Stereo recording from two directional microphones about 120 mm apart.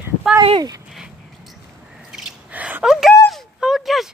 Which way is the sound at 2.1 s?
10° right (ahead or behind).